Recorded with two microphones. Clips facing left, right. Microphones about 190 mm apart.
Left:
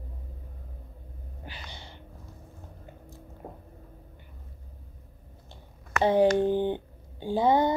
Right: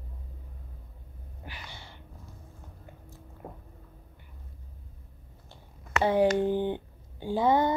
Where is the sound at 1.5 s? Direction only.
20° left (ahead or behind).